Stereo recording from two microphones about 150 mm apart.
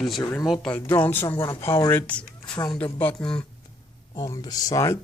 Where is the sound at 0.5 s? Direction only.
5° left (ahead or behind).